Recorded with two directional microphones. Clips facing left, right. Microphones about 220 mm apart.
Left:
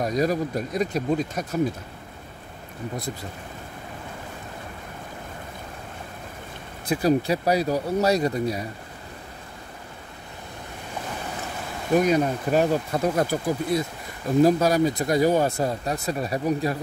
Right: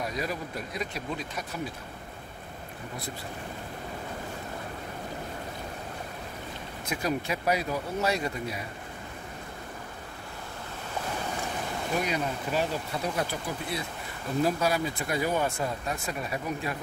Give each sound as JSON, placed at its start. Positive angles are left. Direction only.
{"t": 0.0, "sound": "speech", "side_deg": 40}
{"t": 6.9, "sound": "speech", "side_deg": 35}
{"t": 12.0, "sound": "speech", "side_deg": 45}